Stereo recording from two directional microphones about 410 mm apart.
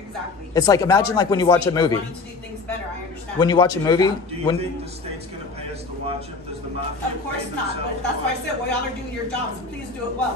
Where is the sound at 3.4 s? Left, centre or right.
Centre.